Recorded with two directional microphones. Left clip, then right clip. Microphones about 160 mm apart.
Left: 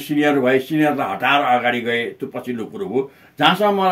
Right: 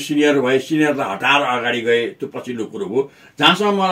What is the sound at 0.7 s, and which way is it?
A man's voice, 30° left (ahead or behind).